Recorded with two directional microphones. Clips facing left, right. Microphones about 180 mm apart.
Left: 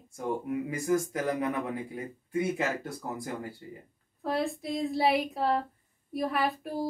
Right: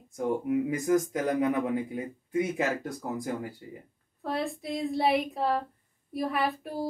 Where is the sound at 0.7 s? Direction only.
20° right (ahead or behind).